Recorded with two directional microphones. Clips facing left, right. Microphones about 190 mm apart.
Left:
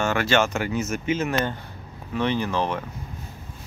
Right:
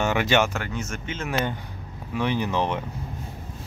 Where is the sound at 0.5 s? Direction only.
10° left (ahead or behind).